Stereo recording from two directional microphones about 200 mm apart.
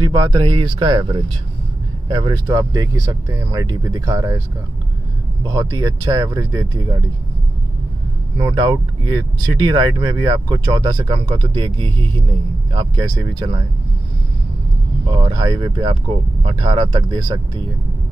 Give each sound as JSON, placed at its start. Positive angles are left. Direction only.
{"t": 0.0, "sound": "speech", "side_deg": -20}
{"t": 5.4, "sound": "speech", "side_deg": -20}
{"t": 8.4, "sound": "speech", "side_deg": -20}
{"t": 15.0, "sound": "speech", "side_deg": -25}